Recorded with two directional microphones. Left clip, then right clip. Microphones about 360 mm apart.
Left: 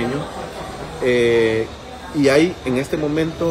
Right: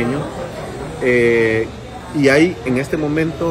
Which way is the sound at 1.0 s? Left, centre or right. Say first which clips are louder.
Right 2 dB; centre.